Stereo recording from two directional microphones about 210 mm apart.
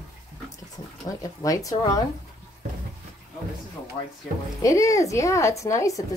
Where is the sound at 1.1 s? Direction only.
15° left (ahead or behind).